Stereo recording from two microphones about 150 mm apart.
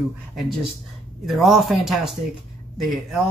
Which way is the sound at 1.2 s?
Centre (ahead or behind).